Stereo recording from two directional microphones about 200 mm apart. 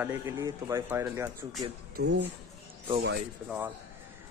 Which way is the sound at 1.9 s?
60° right (ahead or behind).